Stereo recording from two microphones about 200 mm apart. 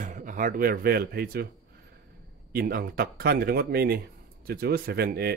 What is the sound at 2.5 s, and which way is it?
A man's voice, 50° right (ahead or behind).